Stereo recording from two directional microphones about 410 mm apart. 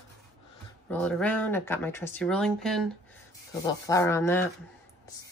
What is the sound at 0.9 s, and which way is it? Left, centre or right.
Speech, centre.